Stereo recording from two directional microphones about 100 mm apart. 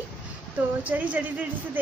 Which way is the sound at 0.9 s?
15° right (ahead or behind).